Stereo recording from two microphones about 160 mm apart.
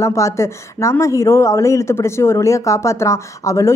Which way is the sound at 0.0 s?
20° left (ahead or behind).